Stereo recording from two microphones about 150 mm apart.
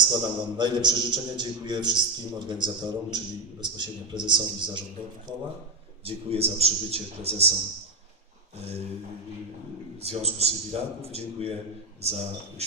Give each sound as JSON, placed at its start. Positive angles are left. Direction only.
{"t": 0.2, "sound": "a man's voice", "side_deg": -30}
{"t": 6.0, "sound": "a man's voice", "side_deg": -40}
{"t": 10.0, "sound": "a man's voice", "side_deg": -45}